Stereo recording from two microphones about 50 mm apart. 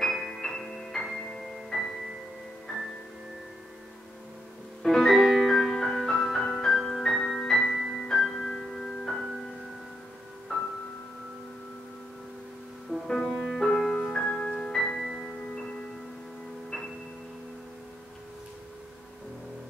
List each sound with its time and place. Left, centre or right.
0.0 s music: centre
4.8 s music: centre
12.9 s music: centre
13.3 s music: centre
13.6 s music: centre